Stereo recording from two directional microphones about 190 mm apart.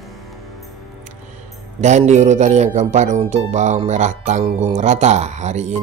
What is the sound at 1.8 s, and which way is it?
Speech, 40° right (ahead or behind).